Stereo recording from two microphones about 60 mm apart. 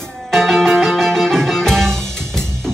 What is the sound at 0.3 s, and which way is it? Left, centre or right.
Music, centre.